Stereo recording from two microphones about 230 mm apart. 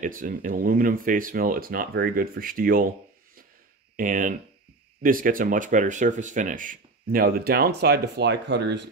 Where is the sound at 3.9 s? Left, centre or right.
Right.